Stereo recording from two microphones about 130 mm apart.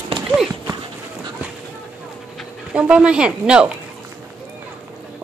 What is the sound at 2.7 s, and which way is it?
Speech, 10° right (ahead or behind).